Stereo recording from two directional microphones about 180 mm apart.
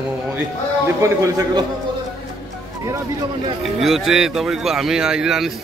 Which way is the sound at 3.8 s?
Centre (ahead or behind).